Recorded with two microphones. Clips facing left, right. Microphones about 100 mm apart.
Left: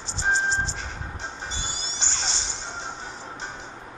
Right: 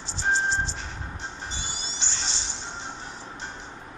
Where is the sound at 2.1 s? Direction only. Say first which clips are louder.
Left 3 dB; 80° left.